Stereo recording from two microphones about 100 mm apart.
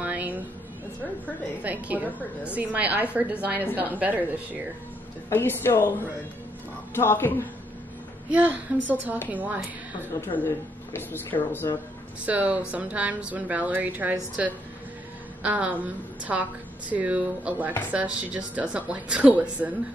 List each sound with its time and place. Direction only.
0.0 s a sound: 15° right (ahead or behind)
1.6 s speech: 15° right (ahead or behind)
2.0 s a woman's voice: 15° left (ahead or behind)
2.5 s speech: 15° right (ahead or behind)
5.3 s speech: 25° left (ahead or behind)
7.0 s speech: 25° left (ahead or behind)
8.3 s speech: 15° right (ahead or behind)
10.3 s speech: 20° left (ahead or behind)
12.3 s speech: 15° right (ahead or behind)
15.4 s speech: 15° right (ahead or behind)